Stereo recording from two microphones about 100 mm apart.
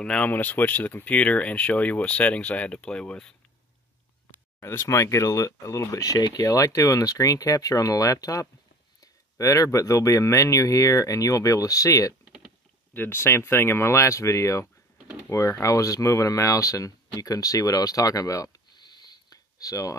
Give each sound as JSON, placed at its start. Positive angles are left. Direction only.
{"t": 0.0, "sound": "speech", "side_deg": 10}
{"t": 4.6, "sound": "speech", "side_deg": 25}
{"t": 12.9, "sound": "speech", "side_deg": 20}